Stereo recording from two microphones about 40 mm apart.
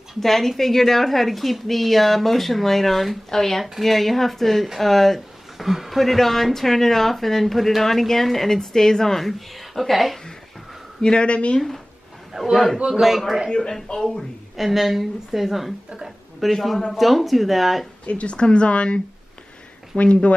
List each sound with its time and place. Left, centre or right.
0.2 s a woman's voice: centre
9.8 s speech: centre
11.0 s speech: left
12.4 s a man's voice: centre
12.7 s a man's voice: right
13.0 s speech: centre
13.5 s a woman's voice: centre
14.6 s speech: centre
18.0 s speech: left
20.0 s speech: left